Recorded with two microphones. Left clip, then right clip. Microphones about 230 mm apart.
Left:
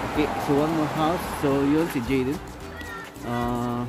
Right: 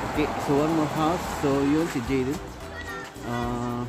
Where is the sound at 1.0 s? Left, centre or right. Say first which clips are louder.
Left 1 dB; centre.